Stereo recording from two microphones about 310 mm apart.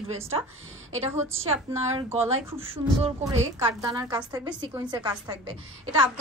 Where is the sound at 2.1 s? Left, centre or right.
Centre.